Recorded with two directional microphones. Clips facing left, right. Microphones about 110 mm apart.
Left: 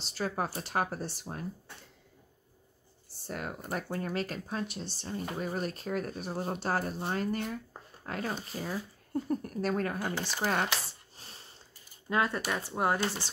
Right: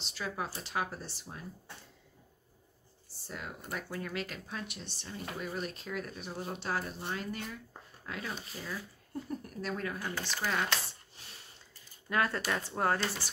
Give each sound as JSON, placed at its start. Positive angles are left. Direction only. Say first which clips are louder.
{"t": 0.0, "sound": "speech", "louder": "left 5 dB", "side_deg": 40}
{"t": 3.3, "sound": "speech", "louder": "left 5 dB", "side_deg": 55}
{"t": 3.7, "sound": "speech", "louder": "left 4 dB", "side_deg": 40}
{"t": 11.1, "sound": "a sound", "louder": "left 2 dB", "side_deg": 35}
{"t": 12.1, "sound": "speech", "louder": "left 2 dB", "side_deg": 20}